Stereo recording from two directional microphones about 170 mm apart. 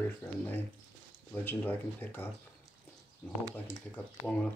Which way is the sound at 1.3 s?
10° left (ahead or behind).